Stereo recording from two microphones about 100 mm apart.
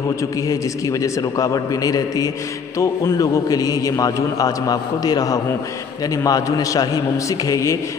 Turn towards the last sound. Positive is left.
turn(degrees=30)  # may be behind; listen again after turning